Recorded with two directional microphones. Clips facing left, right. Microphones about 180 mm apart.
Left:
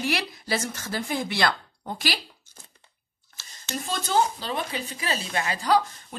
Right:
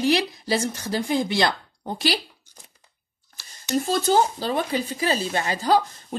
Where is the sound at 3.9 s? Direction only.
40° right (ahead or behind).